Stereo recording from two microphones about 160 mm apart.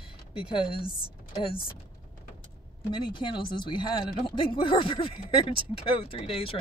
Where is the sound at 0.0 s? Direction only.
35° left (ahead or behind).